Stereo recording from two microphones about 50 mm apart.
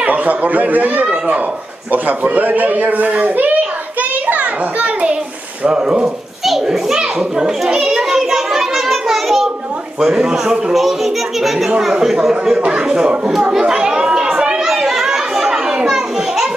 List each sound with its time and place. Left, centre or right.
0.0 s a child's voice: right
6.4 s a child's voice: centre
9.9 s a child's voice: centre
13.3 s chatter: centre
14.6 s children playing: centre